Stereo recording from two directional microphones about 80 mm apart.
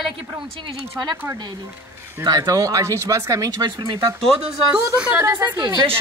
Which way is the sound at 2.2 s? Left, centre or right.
Right.